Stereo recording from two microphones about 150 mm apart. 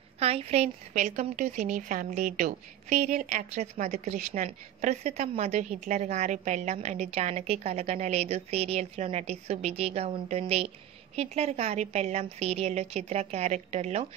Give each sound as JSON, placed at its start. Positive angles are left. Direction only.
{"t": 0.2, "sound": "a woman's voice", "side_deg": -45}